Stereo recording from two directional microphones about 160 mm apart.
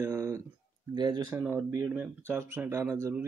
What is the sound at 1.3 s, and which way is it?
Speech, 15° right (ahead or behind).